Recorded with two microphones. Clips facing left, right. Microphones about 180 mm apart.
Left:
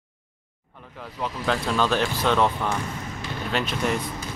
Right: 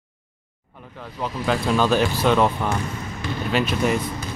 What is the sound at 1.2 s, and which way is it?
Speech, 10° right (ahead or behind).